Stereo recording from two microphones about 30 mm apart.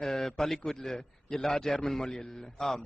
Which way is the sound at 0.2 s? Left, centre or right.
Centre.